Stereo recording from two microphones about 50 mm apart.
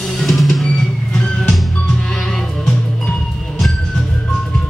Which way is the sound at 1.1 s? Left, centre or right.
Centre.